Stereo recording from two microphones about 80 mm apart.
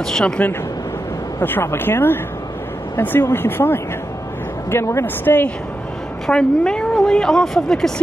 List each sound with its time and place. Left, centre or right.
0.0 s a woman's voice: centre
1.4 s speech: left
6.2 s a woman's voice: centre